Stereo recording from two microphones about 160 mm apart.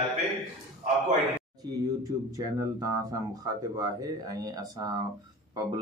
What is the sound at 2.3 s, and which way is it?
Speech, 20° right (ahead or behind).